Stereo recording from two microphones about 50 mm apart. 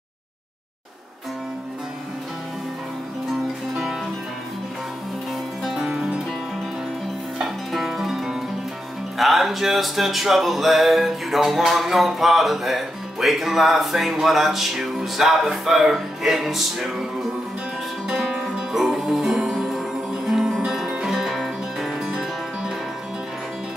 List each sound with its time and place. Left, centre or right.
5.6 s music: centre
5.9 s music: centre
7.4 s music: centre